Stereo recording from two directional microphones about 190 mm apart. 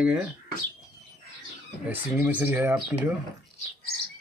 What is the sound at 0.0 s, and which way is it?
Speech, 5° right (ahead or behind).